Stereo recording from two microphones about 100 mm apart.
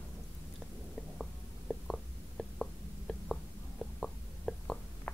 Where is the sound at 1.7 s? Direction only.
5° left (ahead or behind).